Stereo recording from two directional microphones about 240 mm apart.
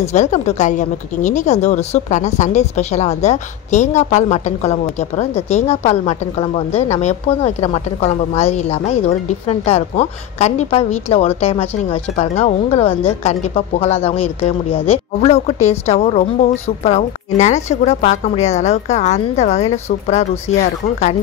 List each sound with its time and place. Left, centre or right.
0.0 s speech: left